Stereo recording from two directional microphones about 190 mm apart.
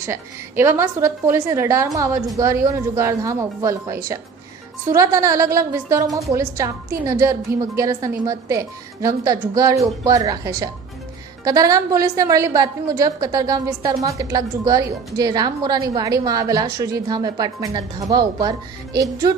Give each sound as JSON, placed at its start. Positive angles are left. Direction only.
{"t": 0.0, "sound": "a woman's voice", "side_deg": -15}